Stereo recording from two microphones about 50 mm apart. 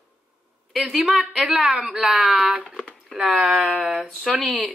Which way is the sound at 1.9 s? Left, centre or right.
Centre.